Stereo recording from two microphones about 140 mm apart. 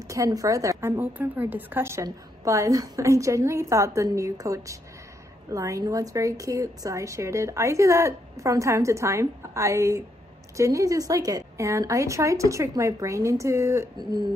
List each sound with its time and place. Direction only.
0.1 s a woman's voice: 25° right (ahead or behind)